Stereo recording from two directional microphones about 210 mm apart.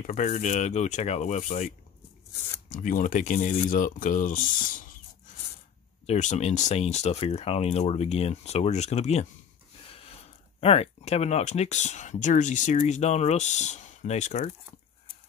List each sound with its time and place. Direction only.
0.0 s speech: 35° left (ahead or behind)
2.7 s speech: 40° left (ahead or behind)
9.8 s a sound: 25° left (ahead or behind)
10.6 s speech: 30° left (ahead or behind)